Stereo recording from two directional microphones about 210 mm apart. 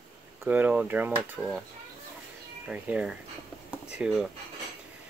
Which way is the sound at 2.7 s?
5° right (ahead or behind).